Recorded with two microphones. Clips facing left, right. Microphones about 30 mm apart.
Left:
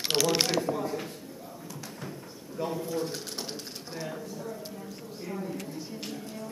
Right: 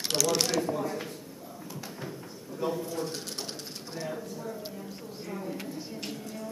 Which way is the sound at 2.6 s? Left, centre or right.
Centre.